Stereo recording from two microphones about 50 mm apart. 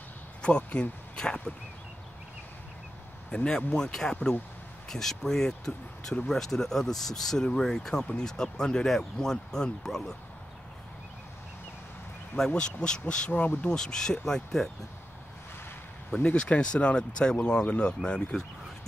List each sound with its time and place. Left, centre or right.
0.4 s speech: centre
3.3 s speech: centre
12.4 s speech: centre
13.7 s speech: centre
16.2 s speech: left